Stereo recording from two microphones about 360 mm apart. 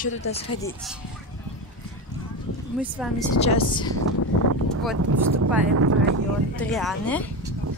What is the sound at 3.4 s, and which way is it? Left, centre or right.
Speech, centre.